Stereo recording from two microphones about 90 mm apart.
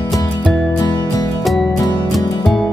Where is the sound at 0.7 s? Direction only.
45° left (ahead or behind).